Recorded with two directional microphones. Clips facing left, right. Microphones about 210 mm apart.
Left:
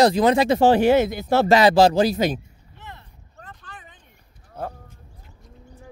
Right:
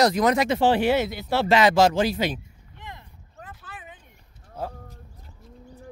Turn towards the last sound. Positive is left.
turn(degrees=-5)  # may be behind; listen again after turning